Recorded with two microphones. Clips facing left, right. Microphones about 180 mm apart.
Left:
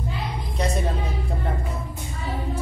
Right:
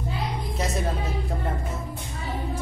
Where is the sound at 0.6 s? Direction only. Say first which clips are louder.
Left 3 dB; centre (ahead or behind).